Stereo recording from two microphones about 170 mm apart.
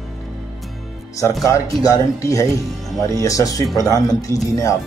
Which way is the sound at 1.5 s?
20° left (ahead or behind).